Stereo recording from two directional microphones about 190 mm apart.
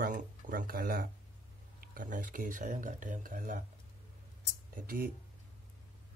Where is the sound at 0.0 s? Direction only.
45° right (ahead or behind).